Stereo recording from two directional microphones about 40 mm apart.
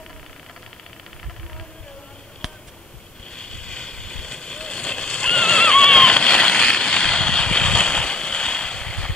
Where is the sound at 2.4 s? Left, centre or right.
Centre.